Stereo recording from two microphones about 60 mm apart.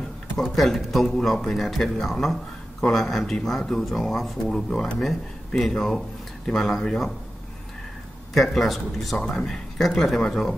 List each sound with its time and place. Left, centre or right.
0.6 s speech: centre
8.4 s speech: centre
9.2 s speech: centre
9.5 s speech: centre